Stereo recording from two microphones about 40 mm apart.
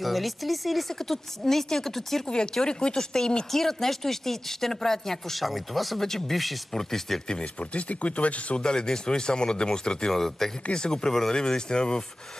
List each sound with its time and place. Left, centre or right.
0.0 s speech: centre
2.2 s speech: left
7.7 s speech: left
8.5 s speech: left